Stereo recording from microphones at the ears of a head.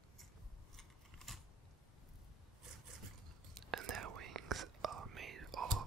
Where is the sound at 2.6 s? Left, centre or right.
Right.